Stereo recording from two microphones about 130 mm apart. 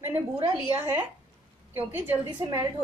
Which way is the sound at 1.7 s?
15° right (ahead or behind).